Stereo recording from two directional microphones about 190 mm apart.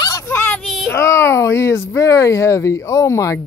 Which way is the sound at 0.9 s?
15° left (ahead or behind).